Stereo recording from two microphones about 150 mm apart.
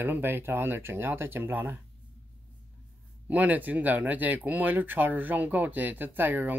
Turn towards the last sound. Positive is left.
turn(degrees=-10)  # may be behind; listen again after turning